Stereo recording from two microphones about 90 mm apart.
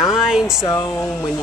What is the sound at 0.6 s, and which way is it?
Speech, 40° left (ahead or behind).